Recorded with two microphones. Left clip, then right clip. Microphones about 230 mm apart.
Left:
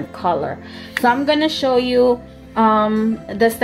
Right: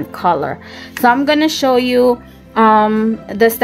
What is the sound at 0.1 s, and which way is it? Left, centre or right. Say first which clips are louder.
Speech: right 4 dB; right.